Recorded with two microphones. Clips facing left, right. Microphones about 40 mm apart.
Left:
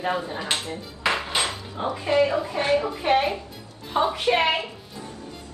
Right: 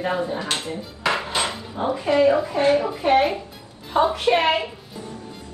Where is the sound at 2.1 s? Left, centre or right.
Right.